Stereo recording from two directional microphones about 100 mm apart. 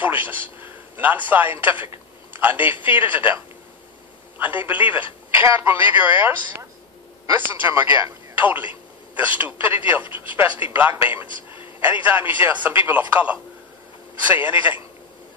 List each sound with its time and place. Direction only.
0.0 s a man's voice: 20° right (ahead or behind)
4.4 s speech: 20° right (ahead or behind)
7.6 s a man's voice: 25° right (ahead or behind)